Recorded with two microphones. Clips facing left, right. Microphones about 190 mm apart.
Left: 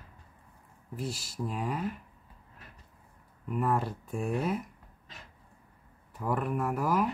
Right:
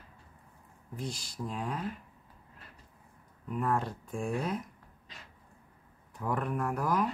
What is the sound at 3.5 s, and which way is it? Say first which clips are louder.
Speech: left 2 dB; 5° left (ahead or behind).